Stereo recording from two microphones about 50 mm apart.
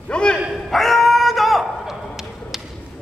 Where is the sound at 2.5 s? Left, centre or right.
Centre.